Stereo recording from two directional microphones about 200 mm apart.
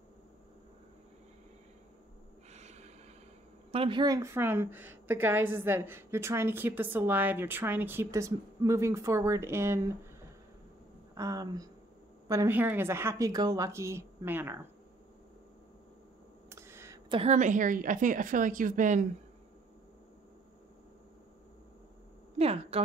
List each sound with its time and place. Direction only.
2.5 s snort: 35° right (ahead or behind)
3.7 s a woman's voice: 25° right (ahead or behind)
11.1 s a woman's voice: 15° right (ahead or behind)
16.4 s a sound: 15° right (ahead or behind)
17.1 s a woman's voice: 35° right (ahead or behind)
22.4 s speech: 30° right (ahead or behind)